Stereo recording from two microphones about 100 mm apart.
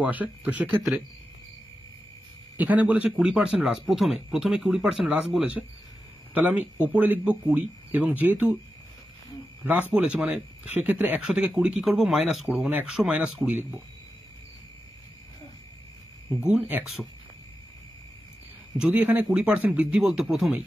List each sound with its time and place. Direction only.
0.0 s speech: 15° right (ahead or behind)
0.9 s cricket: 20° right (ahead or behind)
2.5 s speech: 15° right (ahead or behind)
9.7 s speech: 15° right (ahead or behind)
16.3 s speech: 10° right (ahead or behind)
18.8 s speech: 10° right (ahead or behind)